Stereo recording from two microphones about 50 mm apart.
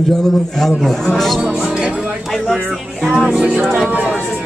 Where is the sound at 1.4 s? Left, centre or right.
Centre.